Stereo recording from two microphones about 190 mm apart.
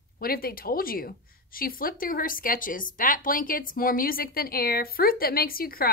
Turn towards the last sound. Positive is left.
turn(degrees=50)  # may be behind; listen again after turning